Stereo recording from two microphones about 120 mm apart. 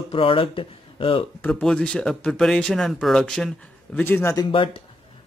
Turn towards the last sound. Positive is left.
turn(degrees=45)  # may be behind; listen again after turning